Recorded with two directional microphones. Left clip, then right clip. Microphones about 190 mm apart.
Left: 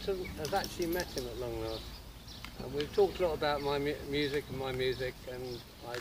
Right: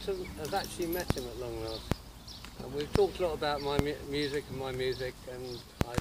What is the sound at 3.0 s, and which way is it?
Speech, centre (ahead or behind).